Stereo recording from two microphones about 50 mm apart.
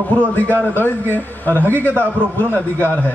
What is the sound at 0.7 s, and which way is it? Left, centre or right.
A man's voice, left.